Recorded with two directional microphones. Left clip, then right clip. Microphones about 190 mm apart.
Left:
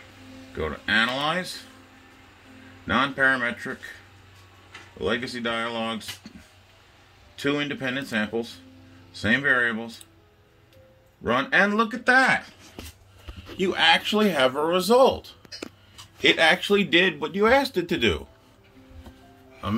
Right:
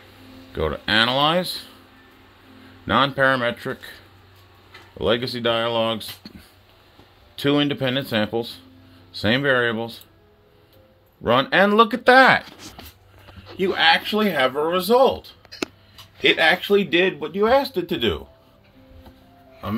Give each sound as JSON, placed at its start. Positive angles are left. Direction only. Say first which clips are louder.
{"t": 0.6, "sound": "speech", "louder": "right 4 dB", "side_deg": -60}
{"t": 2.9, "sound": "speech", "louder": "right 3 dB", "side_deg": -60}
{"t": 5.0, "sound": "speech", "louder": "right 6 dB", "side_deg": -60}
{"t": 7.3, "sound": "speech", "louder": "right 6 dB", "side_deg": -55}
{"t": 11.2, "sound": "speech", "louder": "right 4 dB", "side_deg": -55}
{"t": 13.6, "sound": "speech", "louder": "right 3 dB", "side_deg": -15}